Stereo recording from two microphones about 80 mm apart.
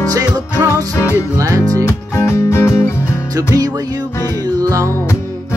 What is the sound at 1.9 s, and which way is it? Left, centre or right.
Music, left.